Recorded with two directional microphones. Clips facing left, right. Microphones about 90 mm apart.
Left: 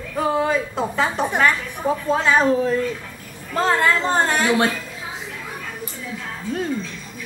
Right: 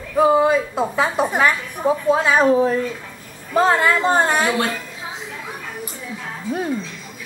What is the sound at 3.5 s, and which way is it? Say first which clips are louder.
Speech: right 3 dB; 10° right (ahead or behind).